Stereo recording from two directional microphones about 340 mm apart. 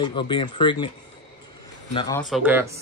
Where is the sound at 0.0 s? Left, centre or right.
Centre.